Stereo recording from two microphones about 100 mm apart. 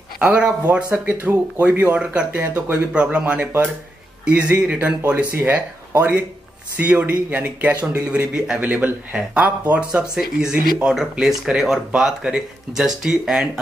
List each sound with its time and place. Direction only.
0.2 s speech: 10° right (ahead or behind)